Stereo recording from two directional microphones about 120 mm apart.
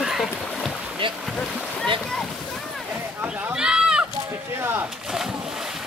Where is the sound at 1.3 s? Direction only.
Centre (ahead or behind).